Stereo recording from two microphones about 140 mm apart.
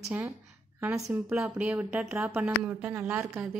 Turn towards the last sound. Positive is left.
turn(degrees=-10)  # may be behind; listen again after turning